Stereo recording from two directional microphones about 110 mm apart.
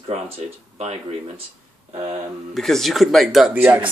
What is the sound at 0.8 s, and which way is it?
Speech, 70° right (ahead or behind).